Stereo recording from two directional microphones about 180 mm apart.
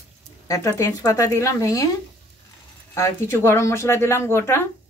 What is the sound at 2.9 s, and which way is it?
Speech, 15° left (ahead or behind).